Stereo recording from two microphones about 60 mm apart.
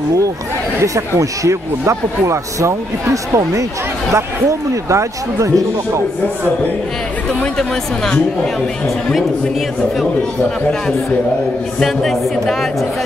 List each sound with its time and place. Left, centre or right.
1.4 s speech: right
7.5 s speech: centre
11.8 s speech: centre